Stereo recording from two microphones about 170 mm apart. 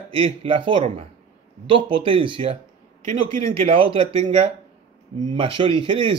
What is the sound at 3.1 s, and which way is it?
Speech, 50° right (ahead or behind).